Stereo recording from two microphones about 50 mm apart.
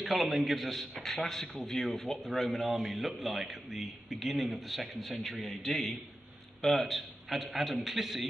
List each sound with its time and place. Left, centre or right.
0.0 s a man's voice: centre